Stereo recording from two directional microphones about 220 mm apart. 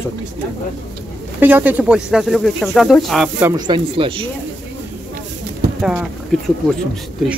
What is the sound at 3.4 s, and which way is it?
Speech, 20° right (ahead or behind).